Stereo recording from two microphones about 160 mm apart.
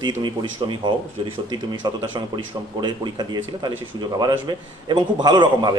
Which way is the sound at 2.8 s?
25° right (ahead or behind).